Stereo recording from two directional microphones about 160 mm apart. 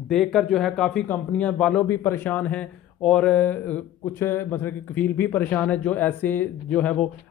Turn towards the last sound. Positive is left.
turn(degrees=10)  # may be behind; listen again after turning